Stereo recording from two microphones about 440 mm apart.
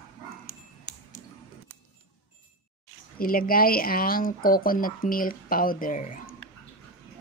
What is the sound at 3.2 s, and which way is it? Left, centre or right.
Speech, centre.